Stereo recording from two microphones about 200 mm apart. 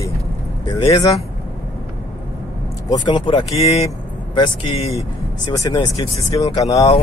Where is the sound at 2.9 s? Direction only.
25° left (ahead or behind).